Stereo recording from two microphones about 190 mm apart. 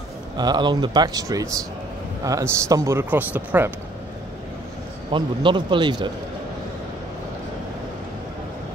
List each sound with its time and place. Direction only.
0.4 s speech: 25° right (ahead or behind)
5.1 s speech: 25° right (ahead or behind)